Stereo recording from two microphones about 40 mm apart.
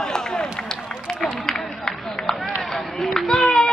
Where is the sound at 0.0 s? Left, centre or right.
Centre.